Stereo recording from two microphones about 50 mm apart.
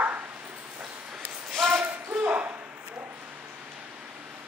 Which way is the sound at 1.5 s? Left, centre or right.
Centre.